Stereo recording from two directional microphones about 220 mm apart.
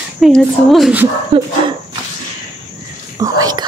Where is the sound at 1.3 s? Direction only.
25° right (ahead or behind).